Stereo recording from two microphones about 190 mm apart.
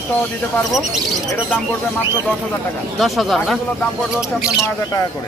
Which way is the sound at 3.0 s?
Centre (ahead or behind).